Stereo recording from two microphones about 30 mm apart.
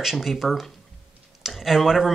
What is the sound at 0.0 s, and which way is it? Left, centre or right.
Speech, centre.